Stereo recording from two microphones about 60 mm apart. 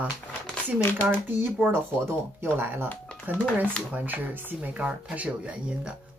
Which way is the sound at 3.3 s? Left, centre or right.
Left.